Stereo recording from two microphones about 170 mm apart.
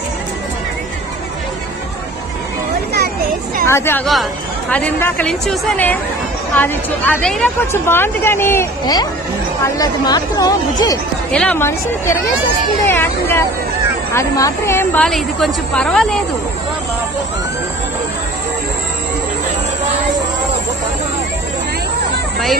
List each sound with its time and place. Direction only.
3.6 s a woman's voice: 15° left (ahead or behind)
4.0 s speech: centre (ahead or behind); by 11.0 s 20° left (ahead or behind)
11.3 s speech: 10° left (ahead or behind)
12.8 s a sound: 15° left (ahead or behind)
14.1 s a woman's voice: 15° left (ahead or behind)